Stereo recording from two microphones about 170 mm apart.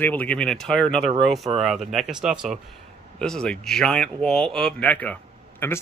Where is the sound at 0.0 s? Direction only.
10° left (ahead or behind).